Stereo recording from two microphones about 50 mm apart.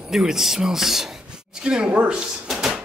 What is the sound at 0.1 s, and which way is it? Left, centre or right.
Speech, centre.